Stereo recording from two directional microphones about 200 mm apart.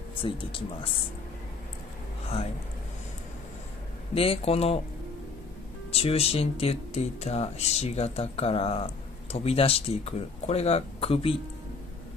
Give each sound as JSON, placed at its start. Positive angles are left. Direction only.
{"t": 0.2, "sound": "speech", "side_deg": 25}
{"t": 4.1, "sound": "speech", "side_deg": 30}
{"t": 5.9, "sound": "speech", "side_deg": 30}